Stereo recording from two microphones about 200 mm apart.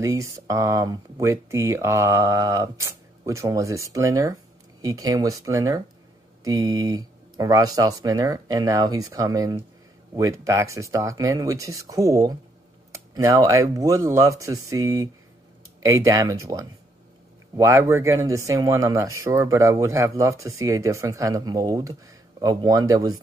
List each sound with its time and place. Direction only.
0.0 s speech: 15° right (ahead or behind)